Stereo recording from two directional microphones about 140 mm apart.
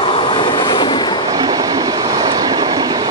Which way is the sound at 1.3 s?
25° right (ahead or behind).